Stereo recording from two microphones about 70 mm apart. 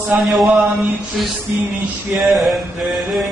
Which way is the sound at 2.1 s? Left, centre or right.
Centre.